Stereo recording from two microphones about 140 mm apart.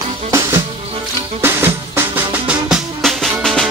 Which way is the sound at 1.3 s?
15° right (ahead or behind).